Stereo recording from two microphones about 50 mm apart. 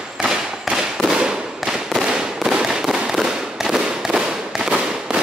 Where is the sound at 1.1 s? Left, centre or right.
Centre.